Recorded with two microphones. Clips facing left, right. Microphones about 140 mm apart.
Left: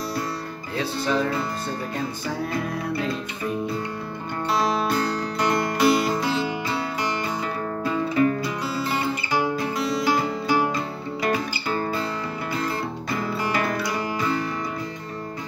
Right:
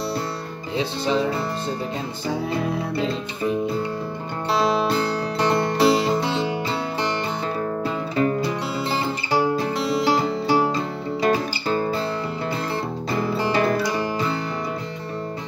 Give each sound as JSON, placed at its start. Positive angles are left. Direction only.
{"t": 0.7, "sound": "music", "side_deg": -20}
{"t": 4.5, "sound": "music", "side_deg": -25}
{"t": 13.1, "sound": "music", "side_deg": -30}